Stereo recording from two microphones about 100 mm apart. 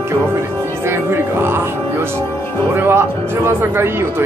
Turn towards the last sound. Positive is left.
turn(degrees=-25)  # may be behind; listen again after turning